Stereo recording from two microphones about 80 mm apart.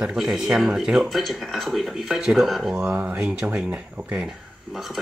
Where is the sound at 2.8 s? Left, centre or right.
Centre.